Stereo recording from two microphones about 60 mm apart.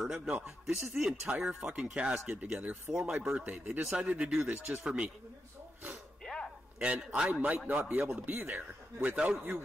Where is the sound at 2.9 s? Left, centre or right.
Centre.